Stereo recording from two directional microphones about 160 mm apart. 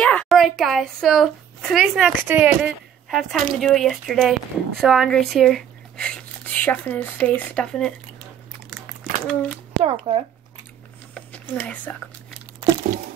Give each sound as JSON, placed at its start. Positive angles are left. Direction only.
{"t": 0.0, "sound": "a woman's voice", "side_deg": 5}
{"t": 9.3, "sound": "speech", "side_deg": 5}
{"t": 9.8, "sound": "speech", "side_deg": -35}
{"t": 11.1, "sound": "a sound", "side_deg": 10}